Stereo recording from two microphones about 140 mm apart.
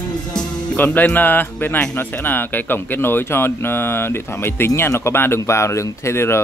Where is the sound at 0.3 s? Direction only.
10° left (ahead or behind).